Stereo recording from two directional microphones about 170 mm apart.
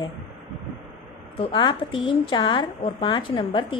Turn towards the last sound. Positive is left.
turn(degrees=30)  # may be behind; listen again after turning